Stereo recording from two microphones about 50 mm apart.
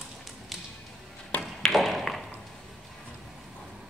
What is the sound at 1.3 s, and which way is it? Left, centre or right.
Ping, left.